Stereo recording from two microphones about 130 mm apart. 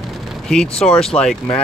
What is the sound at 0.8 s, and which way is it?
Speech, 5° left (ahead or behind).